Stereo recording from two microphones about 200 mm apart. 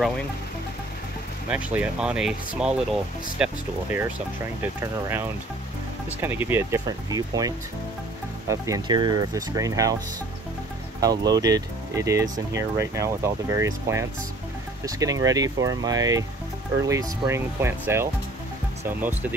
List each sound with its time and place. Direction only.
1.5 s speech: 5° right (ahead or behind)
6.2 s speech: 10° right (ahead or behind)
11.0 s speech: 20° right (ahead or behind)